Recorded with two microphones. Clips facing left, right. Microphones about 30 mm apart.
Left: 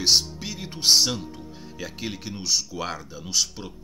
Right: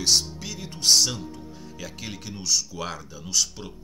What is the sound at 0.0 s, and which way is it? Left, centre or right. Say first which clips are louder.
Speech: left 2 dB; left.